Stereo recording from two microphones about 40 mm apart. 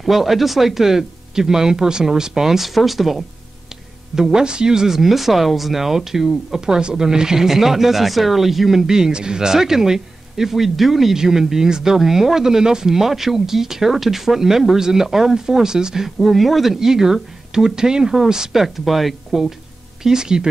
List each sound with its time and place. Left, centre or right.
0.0 s speech: centre
4.1 s speech: centre
16.2 s speech: centre
20.0 s speech: centre